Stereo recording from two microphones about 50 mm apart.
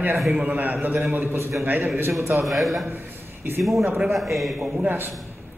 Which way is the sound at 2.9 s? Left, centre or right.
Right.